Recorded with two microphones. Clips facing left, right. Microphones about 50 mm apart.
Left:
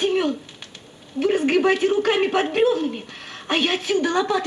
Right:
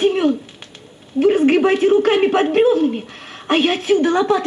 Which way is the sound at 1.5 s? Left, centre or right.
Centre.